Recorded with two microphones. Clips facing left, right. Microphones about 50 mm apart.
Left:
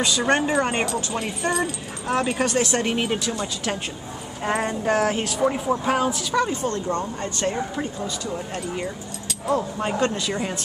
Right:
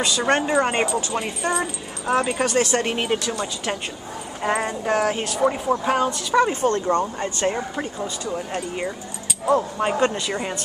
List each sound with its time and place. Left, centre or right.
0.0 s speech: centre
1.6 s speech: centre
2.2 s speech: centre
6.5 s speech: right
7.3 s speech: centre